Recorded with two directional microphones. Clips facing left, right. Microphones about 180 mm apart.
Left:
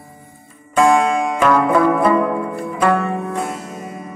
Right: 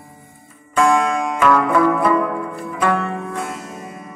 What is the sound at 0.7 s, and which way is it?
Music, 20° left (ahead or behind).